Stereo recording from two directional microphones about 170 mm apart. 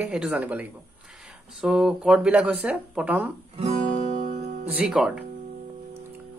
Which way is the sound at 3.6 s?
40° right (ahead or behind).